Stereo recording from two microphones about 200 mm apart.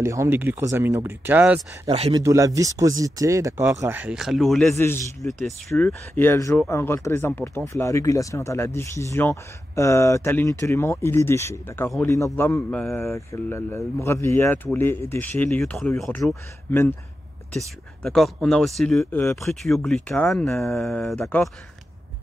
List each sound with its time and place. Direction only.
0.0 s speech: 15° right (ahead or behind)
1.9 s speech: 30° right (ahead or behind)
2.1 s speech: 15° right (ahead or behind); by 16.9 s 10° left (ahead or behind)
18.0 s speech: 5° left (ahead or behind)